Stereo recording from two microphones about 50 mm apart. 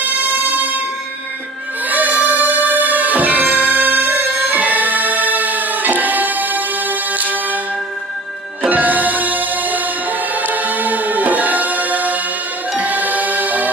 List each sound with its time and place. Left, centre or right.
0.0 s music: right
1.9 s music: right
8.6 s music: right